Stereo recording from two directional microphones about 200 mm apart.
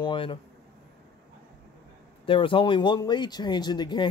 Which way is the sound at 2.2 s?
25° left (ahead or behind).